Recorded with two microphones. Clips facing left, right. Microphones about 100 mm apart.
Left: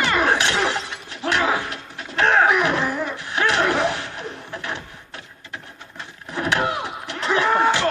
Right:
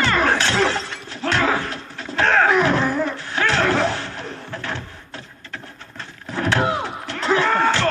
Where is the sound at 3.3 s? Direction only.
15° left (ahead or behind).